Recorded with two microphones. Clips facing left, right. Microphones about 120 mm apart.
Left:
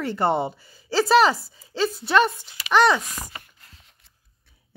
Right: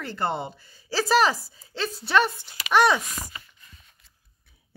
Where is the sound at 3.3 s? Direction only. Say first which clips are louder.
Left 2 dB; 60° left (ahead or behind).